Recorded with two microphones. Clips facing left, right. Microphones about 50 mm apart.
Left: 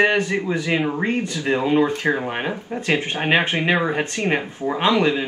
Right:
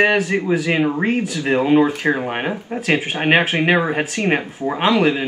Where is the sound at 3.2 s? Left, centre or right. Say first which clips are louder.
Right 5 dB; right.